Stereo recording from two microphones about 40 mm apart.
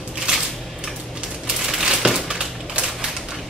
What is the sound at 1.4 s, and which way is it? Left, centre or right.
Crumpling, centre.